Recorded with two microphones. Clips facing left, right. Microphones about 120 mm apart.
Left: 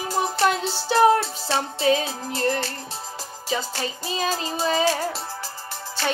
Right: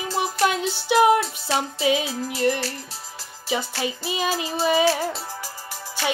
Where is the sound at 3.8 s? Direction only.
15° right (ahead or behind).